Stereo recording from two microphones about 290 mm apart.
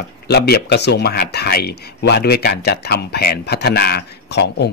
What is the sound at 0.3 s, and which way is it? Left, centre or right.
Speech, left.